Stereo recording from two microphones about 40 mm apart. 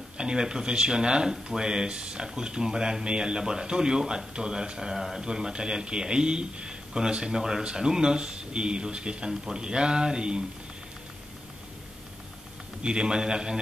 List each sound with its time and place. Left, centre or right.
0.2 s a man's voice: centre
12.8 s a man's voice: centre